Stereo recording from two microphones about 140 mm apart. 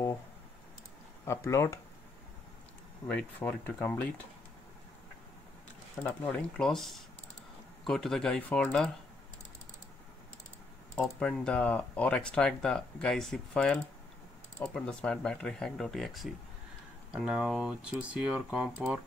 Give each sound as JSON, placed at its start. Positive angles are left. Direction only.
{"t": 1.2, "sound": "speech", "side_deg": 20}
{"t": 3.1, "sound": "speech", "side_deg": 10}
{"t": 6.0, "sound": "speech", "side_deg": 5}
{"t": 11.0, "sound": "speech", "side_deg": 5}